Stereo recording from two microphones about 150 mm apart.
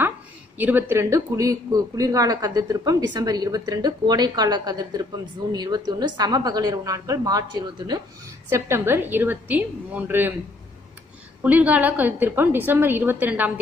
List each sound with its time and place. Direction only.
0.6 s a man's voice: 10° right (ahead or behind); by 8.0 s 30° right (ahead or behind)
8.5 s a woman's voice: 15° right (ahead or behind)
11.4 s a woman's voice: 10° right (ahead or behind)